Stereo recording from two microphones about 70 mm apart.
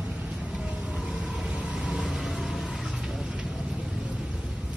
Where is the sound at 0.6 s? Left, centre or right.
Centre.